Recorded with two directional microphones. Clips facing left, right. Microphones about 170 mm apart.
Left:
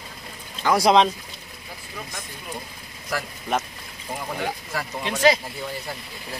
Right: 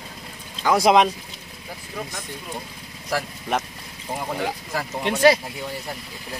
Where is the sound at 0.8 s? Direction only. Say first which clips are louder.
Right 1 dB; 15° right (ahead or behind).